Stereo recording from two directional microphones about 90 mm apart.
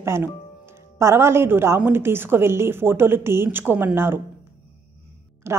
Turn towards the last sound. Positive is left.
turn(degrees=-30)  # may be behind; listen again after turning